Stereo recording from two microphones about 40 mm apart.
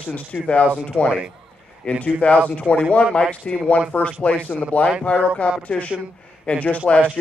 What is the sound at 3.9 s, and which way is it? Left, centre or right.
Speech, left.